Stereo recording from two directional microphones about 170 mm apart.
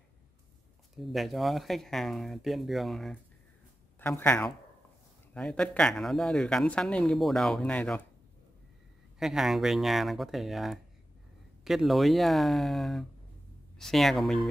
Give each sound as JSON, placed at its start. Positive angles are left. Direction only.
{"t": 0.9, "sound": "speech", "side_deg": 0}
{"t": 4.0, "sound": "speech", "side_deg": 10}
{"t": 9.2, "sound": "speech", "side_deg": 0}